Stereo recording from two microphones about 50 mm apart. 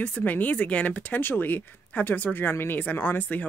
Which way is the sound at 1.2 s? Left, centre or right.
Left.